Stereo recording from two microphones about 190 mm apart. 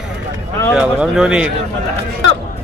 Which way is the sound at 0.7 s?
5° right (ahead or behind).